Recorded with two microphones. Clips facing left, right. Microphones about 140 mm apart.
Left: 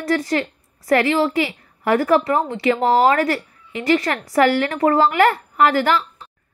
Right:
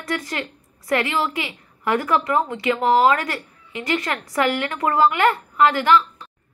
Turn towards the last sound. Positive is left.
turn(degrees=35)  # may be behind; listen again after turning